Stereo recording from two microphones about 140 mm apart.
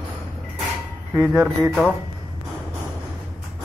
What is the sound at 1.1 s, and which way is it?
Speech, 10° right (ahead or behind).